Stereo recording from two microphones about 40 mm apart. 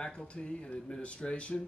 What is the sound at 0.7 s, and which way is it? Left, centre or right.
Speech, centre.